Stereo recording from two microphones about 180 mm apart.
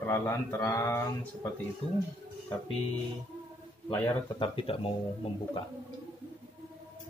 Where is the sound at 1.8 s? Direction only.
35° left (ahead or behind).